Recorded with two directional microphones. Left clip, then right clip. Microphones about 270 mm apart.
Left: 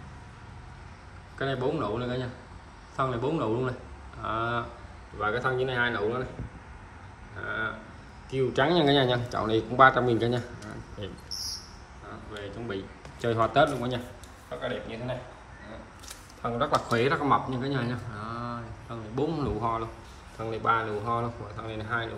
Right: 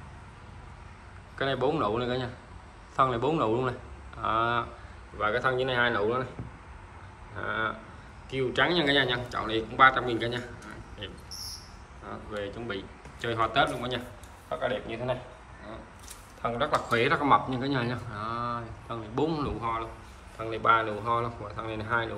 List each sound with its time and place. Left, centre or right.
1.4 s speech: centre
7.3 s speech: centre
8.3 s speech: centre
12.3 s speech: centre
14.5 s speech: centre
16.4 s speech: centre